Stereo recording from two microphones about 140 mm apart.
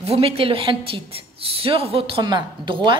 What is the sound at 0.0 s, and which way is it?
A woman's voice, 45° right (ahead or behind).